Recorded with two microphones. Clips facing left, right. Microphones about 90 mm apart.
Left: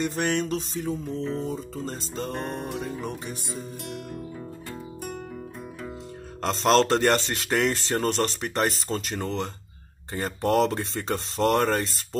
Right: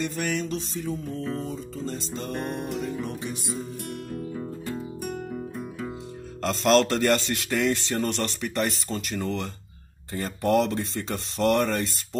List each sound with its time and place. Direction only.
0.1 s speech: 35° left (ahead or behind)
2.3 s music: centre (ahead or behind)
2.8 s speech: 35° left (ahead or behind)
6.5 s speech: 35° left (ahead or behind)